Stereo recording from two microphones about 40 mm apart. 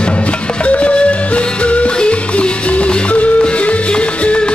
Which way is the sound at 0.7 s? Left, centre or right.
Left.